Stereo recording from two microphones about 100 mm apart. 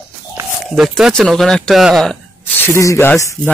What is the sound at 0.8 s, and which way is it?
Speech, 5° right (ahead or behind).